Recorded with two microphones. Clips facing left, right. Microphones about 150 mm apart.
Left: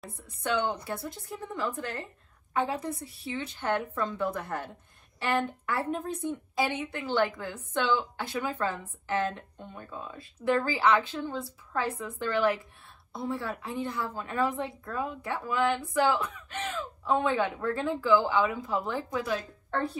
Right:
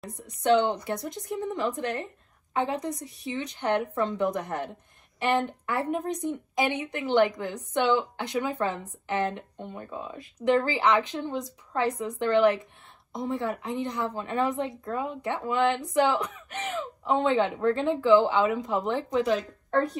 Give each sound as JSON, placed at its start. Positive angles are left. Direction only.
{"t": 0.6, "sound": "a woman's voice", "side_deg": 10}
{"t": 0.8, "sound": "a woman's voice", "side_deg": -20}